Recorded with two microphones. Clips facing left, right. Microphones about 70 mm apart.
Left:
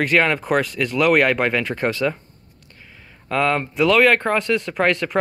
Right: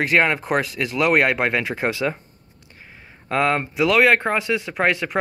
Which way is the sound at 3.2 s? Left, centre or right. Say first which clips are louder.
Even; right.